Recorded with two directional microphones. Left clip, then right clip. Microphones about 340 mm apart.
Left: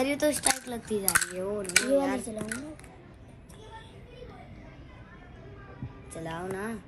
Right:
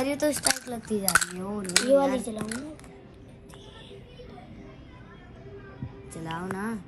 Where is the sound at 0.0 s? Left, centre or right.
Right.